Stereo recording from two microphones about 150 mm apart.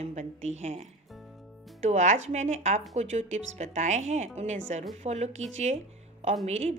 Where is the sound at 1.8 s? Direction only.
55° right (ahead or behind).